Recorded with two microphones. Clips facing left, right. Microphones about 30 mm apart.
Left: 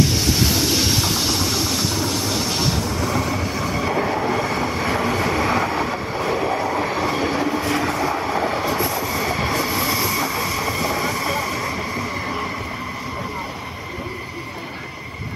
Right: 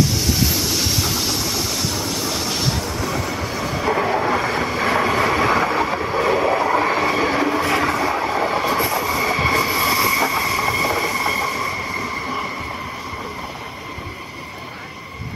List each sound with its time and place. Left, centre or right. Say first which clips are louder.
0.7 s train: left 2 dB; centre
3.9 s train: right 4 dB; centre
8.6 s train: right 2 dB; right
10.6 s a sound: right 3 dB; centre